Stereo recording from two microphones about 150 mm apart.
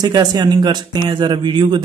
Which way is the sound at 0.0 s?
25° right (ahead or behind).